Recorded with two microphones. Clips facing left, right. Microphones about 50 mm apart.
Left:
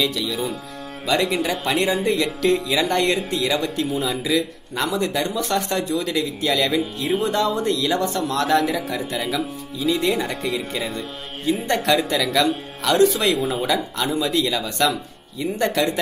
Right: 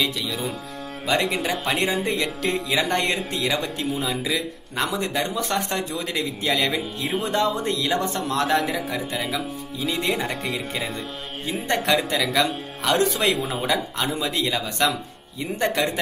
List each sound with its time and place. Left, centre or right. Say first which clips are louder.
1.0 s speech: left 2 dB; centre
2.9 s speech: left 5 dB; centre
3.2 s speech: left 3 dB; centre
7.1 s speech: left 4 dB; centre
7.3 s speech: left 2 dB; right
8.8 s speech: left 2 dB; centre
11.6 s speech: even; right